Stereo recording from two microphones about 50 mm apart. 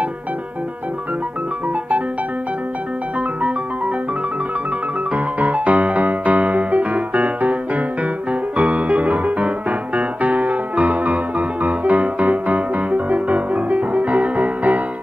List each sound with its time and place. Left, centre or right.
5.1 s music: right
8.5 s keyboard: right